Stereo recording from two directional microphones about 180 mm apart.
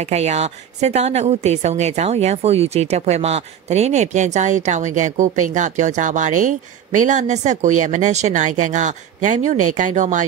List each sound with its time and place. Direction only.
0.0 s a woman's voice: 40° right (ahead or behind)